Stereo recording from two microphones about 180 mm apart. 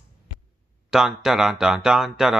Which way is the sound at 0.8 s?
5° right (ahead or behind).